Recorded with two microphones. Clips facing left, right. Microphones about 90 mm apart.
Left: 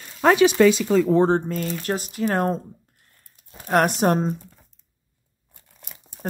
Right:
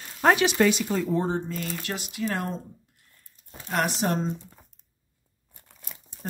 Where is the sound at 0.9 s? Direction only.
85° left.